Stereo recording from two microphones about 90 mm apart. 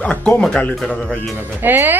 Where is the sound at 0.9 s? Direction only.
5° left (ahead or behind).